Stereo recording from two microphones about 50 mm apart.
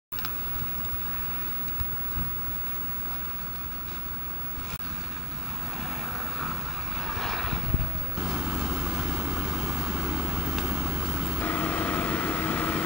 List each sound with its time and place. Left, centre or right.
5.8 s vehicle: centre
8.2 s vehicle: centre
11.4 s vehicle: left